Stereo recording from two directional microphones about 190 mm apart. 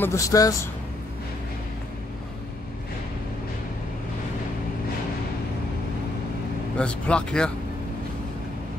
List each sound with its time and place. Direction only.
0.0 s speech: 15° left (ahead or behind)
6.8 s speech: 5° left (ahead or behind)